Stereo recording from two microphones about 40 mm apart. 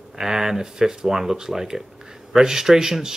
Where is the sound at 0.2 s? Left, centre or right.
Centre.